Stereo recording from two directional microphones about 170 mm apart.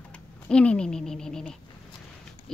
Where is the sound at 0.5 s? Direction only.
5° left (ahead or behind).